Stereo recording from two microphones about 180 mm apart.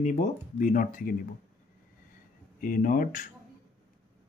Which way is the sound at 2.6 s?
50° left (ahead or behind).